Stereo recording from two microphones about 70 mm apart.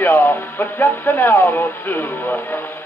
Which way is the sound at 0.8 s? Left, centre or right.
Left.